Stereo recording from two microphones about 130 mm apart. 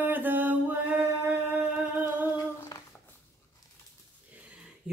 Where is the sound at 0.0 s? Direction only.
15° right (ahead or behind).